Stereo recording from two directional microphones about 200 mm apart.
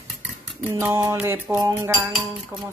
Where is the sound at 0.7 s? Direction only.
10° right (ahead or behind).